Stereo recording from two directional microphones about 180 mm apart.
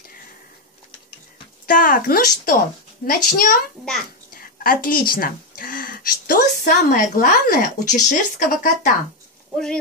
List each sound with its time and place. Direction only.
1.7 s speech: 50° left (ahead or behind)